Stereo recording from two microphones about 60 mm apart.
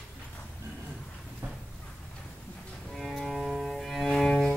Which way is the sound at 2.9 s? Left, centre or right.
Centre.